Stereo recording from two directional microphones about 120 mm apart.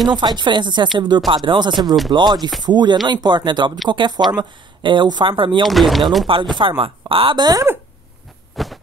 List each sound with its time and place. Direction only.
0.1 s speech: 35° right (ahead or behind)
5.7 s speech: centre (ahead or behind)
6.2 s speech: 45° right (ahead or behind)
8.6 s heart sounds: centre (ahead or behind)